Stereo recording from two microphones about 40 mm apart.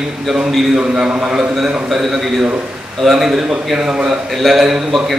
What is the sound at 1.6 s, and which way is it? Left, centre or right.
A man's voice, centre.